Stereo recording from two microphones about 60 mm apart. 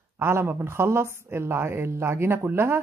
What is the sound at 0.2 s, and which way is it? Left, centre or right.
A woman's voice, right.